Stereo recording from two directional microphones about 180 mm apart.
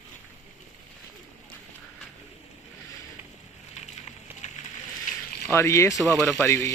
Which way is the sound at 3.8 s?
40° left (ahead or behind).